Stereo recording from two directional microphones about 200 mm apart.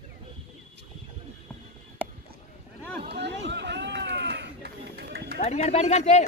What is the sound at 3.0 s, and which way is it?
Run, 55° right (ahead or behind).